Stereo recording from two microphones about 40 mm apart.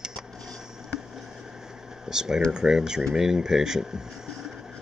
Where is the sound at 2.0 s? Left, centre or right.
Centre.